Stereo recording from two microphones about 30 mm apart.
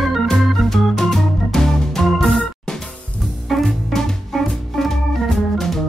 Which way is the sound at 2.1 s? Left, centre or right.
Centre.